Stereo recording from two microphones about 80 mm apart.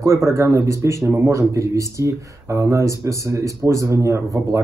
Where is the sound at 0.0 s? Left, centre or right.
Right.